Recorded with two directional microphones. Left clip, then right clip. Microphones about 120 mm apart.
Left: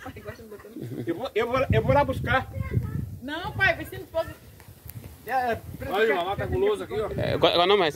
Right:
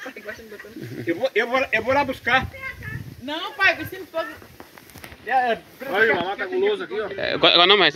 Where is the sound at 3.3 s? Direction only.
50° right (ahead or behind).